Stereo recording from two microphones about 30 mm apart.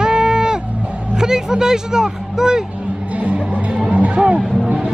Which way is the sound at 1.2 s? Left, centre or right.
Right.